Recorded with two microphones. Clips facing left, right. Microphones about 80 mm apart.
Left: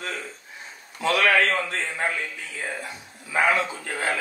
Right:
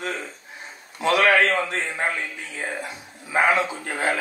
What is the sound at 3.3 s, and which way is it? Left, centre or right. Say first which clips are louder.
Speech: right 2 dB; right.